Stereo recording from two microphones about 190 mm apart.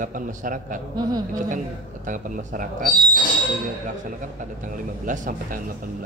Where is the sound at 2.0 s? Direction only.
45° right (ahead or behind).